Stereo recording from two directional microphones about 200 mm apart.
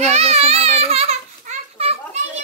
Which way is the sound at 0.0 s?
30° right (ahead or behind).